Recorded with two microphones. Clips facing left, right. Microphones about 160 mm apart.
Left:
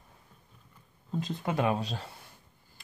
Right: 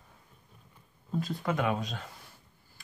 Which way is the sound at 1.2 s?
20° left (ahead or behind).